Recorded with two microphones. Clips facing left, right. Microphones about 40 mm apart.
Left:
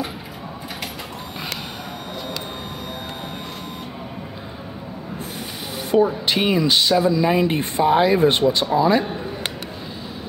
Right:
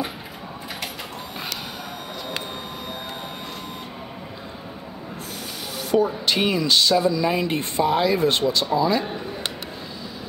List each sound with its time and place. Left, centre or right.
5.9 s a man's voice: centre